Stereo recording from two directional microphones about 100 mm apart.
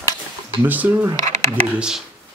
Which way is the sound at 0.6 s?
20° right (ahead or behind).